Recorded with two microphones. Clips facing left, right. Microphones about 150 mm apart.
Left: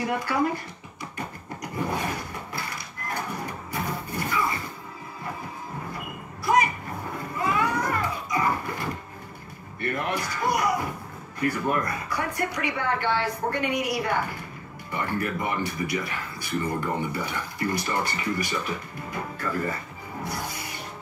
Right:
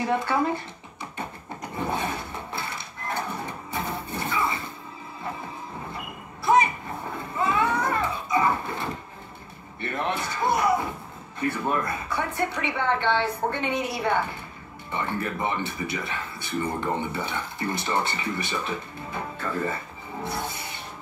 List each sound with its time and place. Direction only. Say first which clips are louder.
0.2 s speech: right 1 dB; 25° right (ahead or behind)
1.1 s a sound: right 1 dB; 25° right (ahead or behind)
6.4 s a sound: right 2 dB; 25° right (ahead or behind)
7.2 s music: right 1 dB; 25° right (ahead or behind)
9.8 s speech: even; 25° right (ahead or behind)
20.2 s rub: right 2 dB; 25° right (ahead or behind)